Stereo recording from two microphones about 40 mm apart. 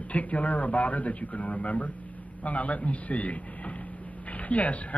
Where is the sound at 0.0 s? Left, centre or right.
Left.